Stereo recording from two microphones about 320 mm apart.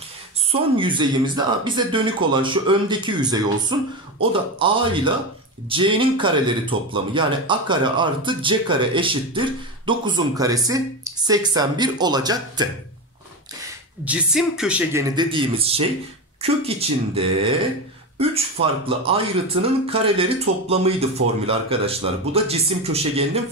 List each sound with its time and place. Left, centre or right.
0.5 s a man's voice: centre
14.0 s a man's voice: centre